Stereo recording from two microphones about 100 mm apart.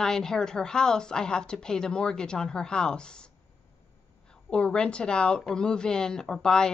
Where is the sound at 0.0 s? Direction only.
5° left (ahead or behind).